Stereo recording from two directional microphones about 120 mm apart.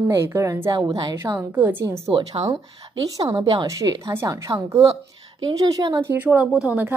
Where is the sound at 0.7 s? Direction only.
35° right (ahead or behind).